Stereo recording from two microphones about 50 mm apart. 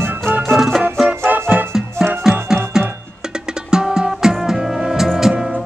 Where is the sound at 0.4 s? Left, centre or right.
Centre.